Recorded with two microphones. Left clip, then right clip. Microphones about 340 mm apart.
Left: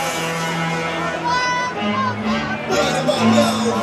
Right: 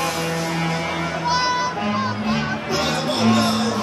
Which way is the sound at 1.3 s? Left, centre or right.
Left.